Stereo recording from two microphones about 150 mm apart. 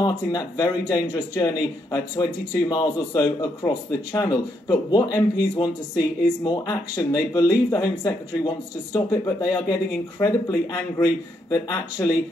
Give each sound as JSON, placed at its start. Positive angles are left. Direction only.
{"t": 0.0, "sound": "a man's voice", "side_deg": 25}